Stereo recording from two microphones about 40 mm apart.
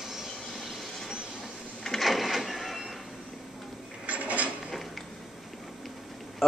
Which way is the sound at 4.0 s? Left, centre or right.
Right.